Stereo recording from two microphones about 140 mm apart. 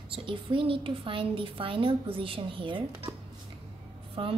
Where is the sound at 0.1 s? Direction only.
40° right (ahead or behind).